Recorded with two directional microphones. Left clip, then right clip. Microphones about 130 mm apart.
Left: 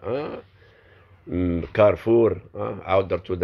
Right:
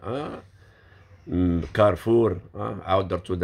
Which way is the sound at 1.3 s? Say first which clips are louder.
Left 1 dB; 30° right (ahead or behind).